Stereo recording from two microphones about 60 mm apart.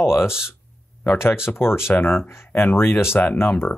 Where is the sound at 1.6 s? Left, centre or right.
Left.